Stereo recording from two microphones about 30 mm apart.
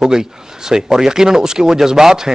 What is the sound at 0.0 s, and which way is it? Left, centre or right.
Speech, centre.